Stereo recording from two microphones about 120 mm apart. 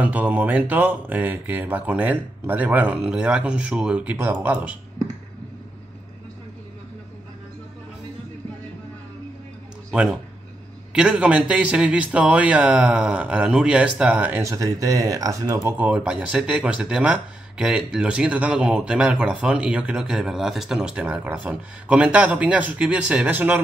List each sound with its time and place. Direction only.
0.0 s speech: 15° right (ahead or behind)
9.8 s speech: 5° right (ahead or behind)
14.4 s speech: 30° right (ahead or behind)
15.8 s speech: 10° right (ahead or behind)